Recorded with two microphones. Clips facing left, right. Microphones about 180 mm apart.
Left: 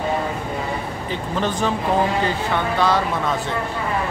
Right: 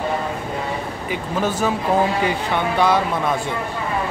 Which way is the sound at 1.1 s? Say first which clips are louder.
Right 1 dB; 5° right (ahead or behind).